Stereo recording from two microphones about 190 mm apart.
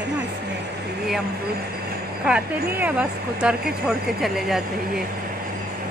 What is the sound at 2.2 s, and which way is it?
Speech, 5° right (ahead or behind).